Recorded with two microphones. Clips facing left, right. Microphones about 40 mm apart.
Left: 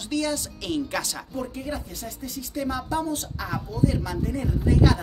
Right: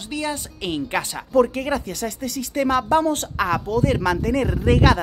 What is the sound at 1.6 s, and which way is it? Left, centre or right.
A woman's voice, right.